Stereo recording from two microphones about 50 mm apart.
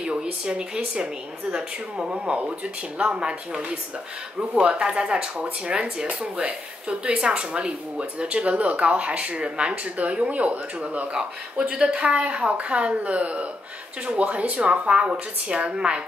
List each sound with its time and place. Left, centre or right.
0.0 s speech: right
11.7 s speech: centre